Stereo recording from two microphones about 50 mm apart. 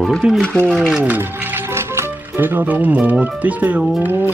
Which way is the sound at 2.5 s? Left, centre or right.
Right.